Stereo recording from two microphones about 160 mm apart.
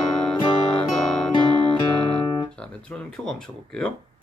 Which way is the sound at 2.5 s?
5° left (ahead or behind).